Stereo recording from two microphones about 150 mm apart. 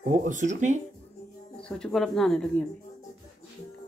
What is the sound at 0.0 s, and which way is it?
Speech, 60° right (ahead or behind).